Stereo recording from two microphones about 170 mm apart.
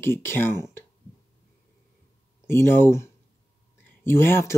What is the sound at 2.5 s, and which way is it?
Speech, 15° left (ahead or behind).